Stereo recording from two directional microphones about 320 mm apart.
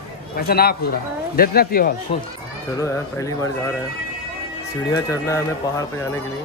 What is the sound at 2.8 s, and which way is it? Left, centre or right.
Speech, centre.